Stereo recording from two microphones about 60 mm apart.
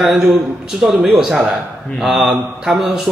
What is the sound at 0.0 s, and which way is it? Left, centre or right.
A man's voice, centre.